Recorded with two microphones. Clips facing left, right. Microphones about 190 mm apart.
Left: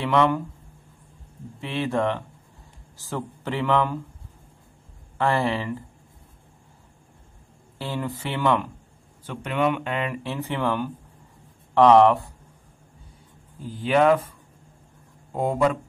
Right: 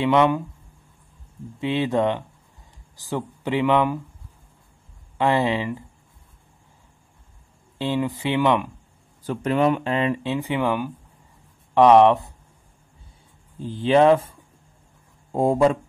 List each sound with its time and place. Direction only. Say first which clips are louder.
0.0 s speech: right 3 dB; 20° right (ahead or behind)
1.6 s speech: right 4 dB; 20° right (ahead or behind)
5.1 s speech: right 3 dB; 15° right (ahead or behind)
7.8 s speech: right 6 dB; 15° right (ahead or behind)
9.2 s speech: right 4 dB; 35° right (ahead or behind)
10.2 s speech: right 3 dB; 15° right (ahead or behind)
13.6 s speech: right 3 dB; 25° right (ahead or behind)
15.3 s speech: right 4 dB; 30° right (ahead or behind)